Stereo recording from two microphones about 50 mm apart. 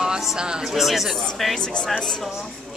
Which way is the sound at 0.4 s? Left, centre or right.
Centre.